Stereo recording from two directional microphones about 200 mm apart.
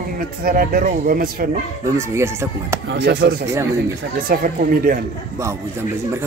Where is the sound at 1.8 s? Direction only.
15° right (ahead or behind).